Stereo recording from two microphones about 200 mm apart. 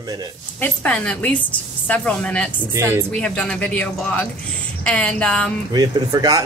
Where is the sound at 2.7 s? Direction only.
15° right (ahead or behind).